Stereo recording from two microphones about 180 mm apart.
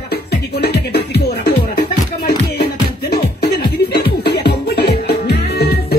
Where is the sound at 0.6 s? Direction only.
65° left (ahead or behind).